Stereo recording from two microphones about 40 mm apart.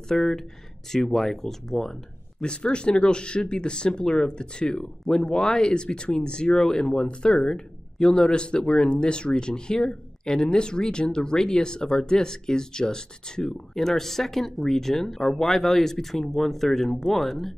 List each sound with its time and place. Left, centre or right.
0.1 s speech: centre
2.4 s speech: left; by 17.6 s centre